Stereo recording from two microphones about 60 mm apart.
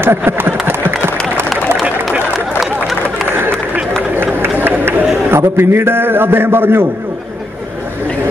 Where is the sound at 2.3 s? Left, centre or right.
Centre.